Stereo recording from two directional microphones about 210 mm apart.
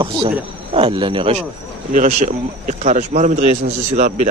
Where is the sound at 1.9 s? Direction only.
35° right (ahead or behind).